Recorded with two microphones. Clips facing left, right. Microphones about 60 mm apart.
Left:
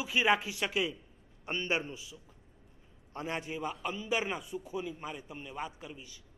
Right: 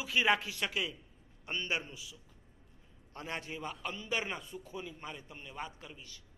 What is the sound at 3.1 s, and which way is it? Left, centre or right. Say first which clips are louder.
A man's voice: left 4 dB; centre.